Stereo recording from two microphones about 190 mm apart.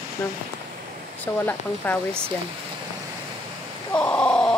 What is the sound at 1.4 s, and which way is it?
Speech, 10° left (ahead or behind).